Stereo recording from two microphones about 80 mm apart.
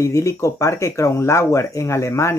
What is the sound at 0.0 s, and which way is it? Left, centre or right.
Speech, left.